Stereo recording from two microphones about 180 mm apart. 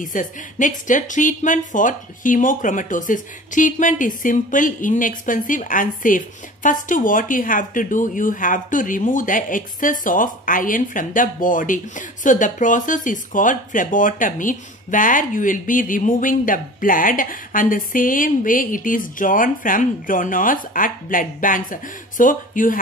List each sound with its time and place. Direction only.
0.0 s a woman's voice: 45° left (ahead or behind)